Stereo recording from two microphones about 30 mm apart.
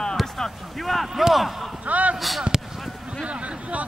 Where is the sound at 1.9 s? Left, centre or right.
Right.